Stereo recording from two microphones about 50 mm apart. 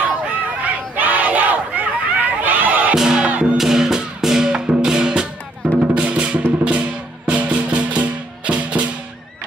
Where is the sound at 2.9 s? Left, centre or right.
Centre.